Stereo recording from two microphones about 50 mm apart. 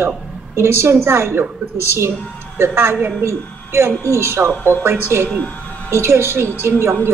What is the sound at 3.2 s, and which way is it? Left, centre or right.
A woman's voice, right.